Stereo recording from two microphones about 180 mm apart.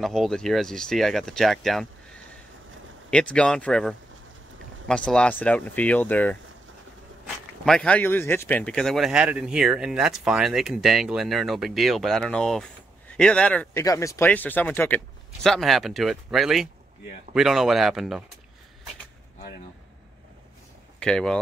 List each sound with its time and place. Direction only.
0.0 s speech: centre (ahead or behind)
3.1 s speech: 5° left (ahead or behind)
7.6 s speech: 5° left (ahead or behind)
21.0 s speech: 5° left (ahead or behind)